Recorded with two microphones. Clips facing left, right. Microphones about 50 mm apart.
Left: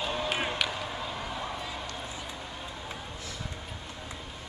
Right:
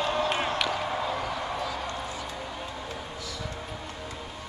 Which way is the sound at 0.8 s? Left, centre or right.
Right.